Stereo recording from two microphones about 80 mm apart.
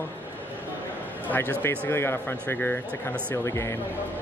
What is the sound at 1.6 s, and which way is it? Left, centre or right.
Speech, left.